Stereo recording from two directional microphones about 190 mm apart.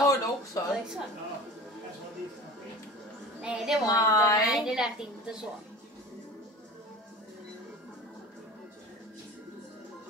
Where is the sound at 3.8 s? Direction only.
20° left (ahead or behind).